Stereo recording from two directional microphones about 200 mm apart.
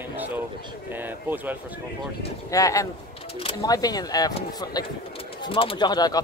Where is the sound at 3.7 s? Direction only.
20° left (ahead or behind).